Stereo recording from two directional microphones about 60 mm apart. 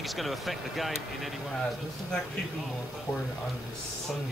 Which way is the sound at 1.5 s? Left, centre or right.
Centre.